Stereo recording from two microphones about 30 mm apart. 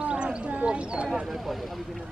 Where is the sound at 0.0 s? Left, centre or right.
Right.